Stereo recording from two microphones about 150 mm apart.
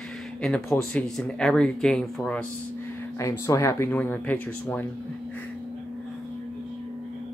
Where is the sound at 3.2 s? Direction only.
20° left (ahead or behind).